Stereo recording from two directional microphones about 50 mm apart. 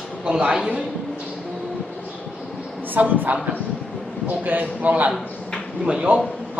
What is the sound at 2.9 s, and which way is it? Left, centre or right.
A woman's voice, right.